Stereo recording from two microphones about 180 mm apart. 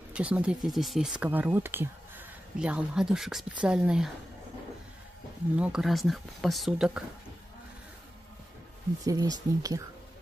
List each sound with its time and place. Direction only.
0.1 s speech: 5° right (ahead or behind)
5.6 s speech: 5° right (ahead or behind)
9.0 s speech: 20° right (ahead or behind)